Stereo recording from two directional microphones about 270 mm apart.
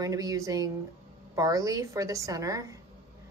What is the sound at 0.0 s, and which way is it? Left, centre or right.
Speech, centre.